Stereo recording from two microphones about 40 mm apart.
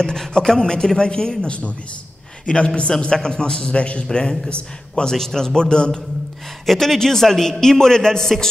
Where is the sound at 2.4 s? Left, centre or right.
Left.